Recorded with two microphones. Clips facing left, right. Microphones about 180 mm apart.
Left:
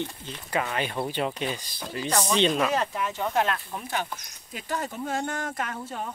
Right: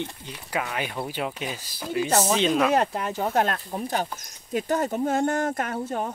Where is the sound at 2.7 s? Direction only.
50° right (ahead or behind).